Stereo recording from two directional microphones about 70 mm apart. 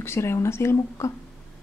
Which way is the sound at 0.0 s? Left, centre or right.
Left.